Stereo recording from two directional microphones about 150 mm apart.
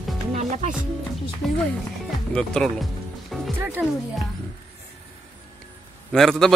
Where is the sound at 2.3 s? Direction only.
5° left (ahead or behind).